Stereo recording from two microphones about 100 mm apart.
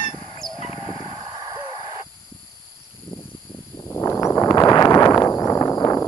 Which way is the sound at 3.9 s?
30° left (ahead or behind).